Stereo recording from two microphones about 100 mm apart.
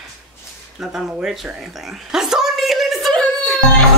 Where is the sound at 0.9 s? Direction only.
5° right (ahead or behind).